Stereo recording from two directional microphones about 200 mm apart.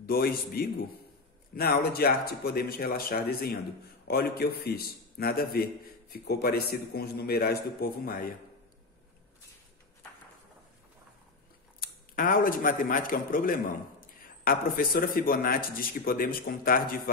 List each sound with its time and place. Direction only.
0.0 s speech: 50° left (ahead or behind)
11.8 s a man's voice: 45° left (ahead or behind)